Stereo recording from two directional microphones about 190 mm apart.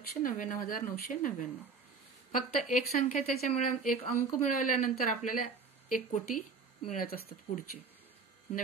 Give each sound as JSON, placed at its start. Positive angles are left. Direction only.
{"t": 0.2, "sound": "speech", "side_deg": 45}
{"t": 2.7, "sound": "speech", "side_deg": 45}